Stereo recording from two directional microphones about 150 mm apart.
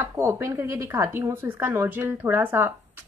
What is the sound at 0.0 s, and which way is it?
A woman's voice, 20° right (ahead or behind).